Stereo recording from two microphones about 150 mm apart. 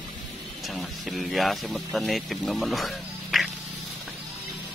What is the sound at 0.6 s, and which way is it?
Speech, centre (ahead or behind).